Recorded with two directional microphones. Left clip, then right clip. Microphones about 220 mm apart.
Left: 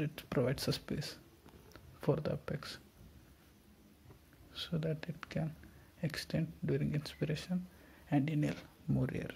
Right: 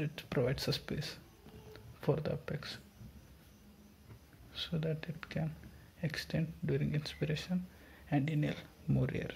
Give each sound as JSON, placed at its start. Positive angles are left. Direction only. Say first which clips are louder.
{"t": 0.0, "sound": "speech", "louder": "even", "side_deg": 15}
{"t": 4.6, "sound": "speech", "louder": "right 1 dB", "side_deg": 15}